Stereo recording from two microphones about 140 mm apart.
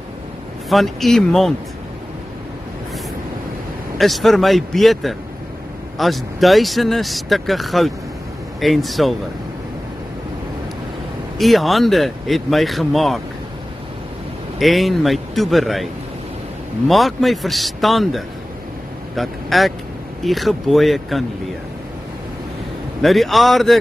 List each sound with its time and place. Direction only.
0.7 s speech: centre (ahead or behind)
4.0 s speech: centre (ahead or behind)
11.3 s speech: centre (ahead or behind)
14.6 s a man's voice: centre (ahead or behind)
23.0 s speech: centre (ahead or behind)